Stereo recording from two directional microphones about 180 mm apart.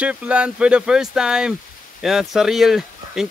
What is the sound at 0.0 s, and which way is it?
Speech, 5° right (ahead or behind).